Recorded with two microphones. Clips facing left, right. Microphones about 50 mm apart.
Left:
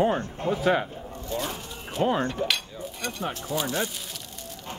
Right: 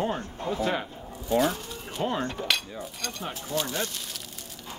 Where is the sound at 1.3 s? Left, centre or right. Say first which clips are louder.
Right 8 dB; centre.